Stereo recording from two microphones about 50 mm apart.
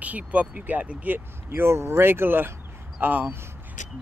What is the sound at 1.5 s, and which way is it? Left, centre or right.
Speech, right.